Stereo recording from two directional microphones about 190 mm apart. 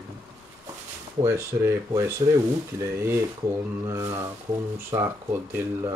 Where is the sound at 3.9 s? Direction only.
15° right (ahead or behind).